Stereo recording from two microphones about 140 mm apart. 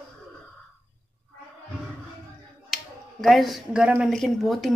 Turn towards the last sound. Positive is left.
turn(degrees=0)  # may be behind; listen again after turning